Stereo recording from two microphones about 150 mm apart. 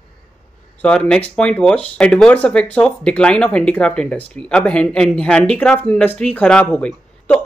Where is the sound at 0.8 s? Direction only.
5° left (ahead or behind).